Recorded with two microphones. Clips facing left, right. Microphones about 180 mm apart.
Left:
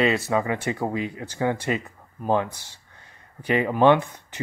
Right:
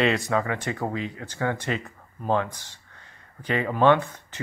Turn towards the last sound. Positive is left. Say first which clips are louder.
# left 1 dB
turn(degrees=15)  # may be behind; listen again after turning